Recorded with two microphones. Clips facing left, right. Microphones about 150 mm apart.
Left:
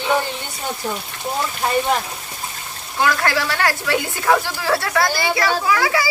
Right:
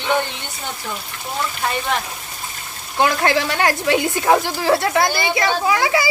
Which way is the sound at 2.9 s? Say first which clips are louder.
Right 2 dB; 20° right (ahead or behind).